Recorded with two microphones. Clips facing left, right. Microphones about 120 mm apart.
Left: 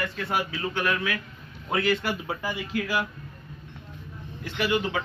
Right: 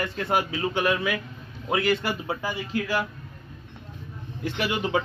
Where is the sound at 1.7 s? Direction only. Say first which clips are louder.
Right 1 dB; 5° right (ahead or behind).